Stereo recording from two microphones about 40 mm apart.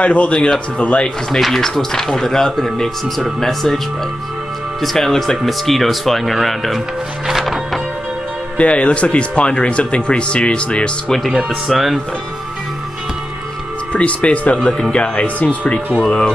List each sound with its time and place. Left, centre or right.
0.0 s speech: left
1.4 s speech: centre
4.8 s speech: centre
7.4 s music: centre
8.5 s speech: left
11.1 s speech: centre
13.9 s speech: left